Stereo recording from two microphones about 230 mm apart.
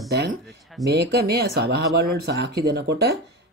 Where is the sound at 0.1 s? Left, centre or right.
Right.